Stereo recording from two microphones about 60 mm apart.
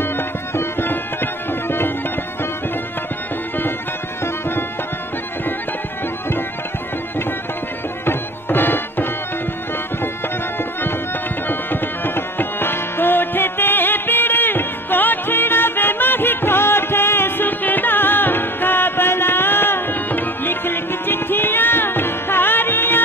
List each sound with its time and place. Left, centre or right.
0.6 s music: left
8.0 s music: left
11.4 s music: left